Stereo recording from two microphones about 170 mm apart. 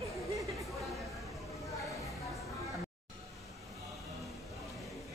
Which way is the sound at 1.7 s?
20° left (ahead or behind).